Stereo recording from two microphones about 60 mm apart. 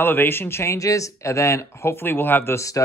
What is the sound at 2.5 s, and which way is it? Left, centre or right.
Speech, left.